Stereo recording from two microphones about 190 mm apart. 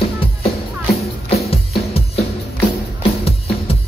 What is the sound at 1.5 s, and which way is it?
Music, 30° left (ahead or behind).